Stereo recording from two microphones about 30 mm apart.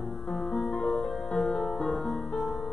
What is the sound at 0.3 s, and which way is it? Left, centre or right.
Music, centre.